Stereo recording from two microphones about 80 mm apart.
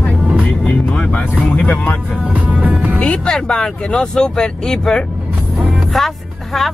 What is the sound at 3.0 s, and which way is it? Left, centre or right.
Speech, centre.